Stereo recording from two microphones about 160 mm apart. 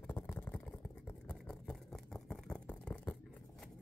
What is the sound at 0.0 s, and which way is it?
Vehicle, 10° left (ahead or behind).